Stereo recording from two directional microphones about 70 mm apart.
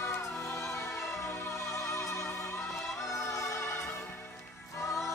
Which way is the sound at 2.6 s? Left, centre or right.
Centre.